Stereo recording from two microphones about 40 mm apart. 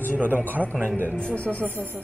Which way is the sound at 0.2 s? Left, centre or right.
Right.